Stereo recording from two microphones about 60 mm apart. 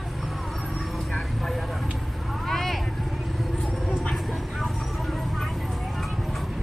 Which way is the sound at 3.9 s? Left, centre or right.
Centre.